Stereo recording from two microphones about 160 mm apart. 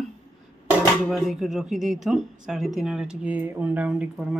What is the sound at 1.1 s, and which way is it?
Speech, centre (ahead or behind).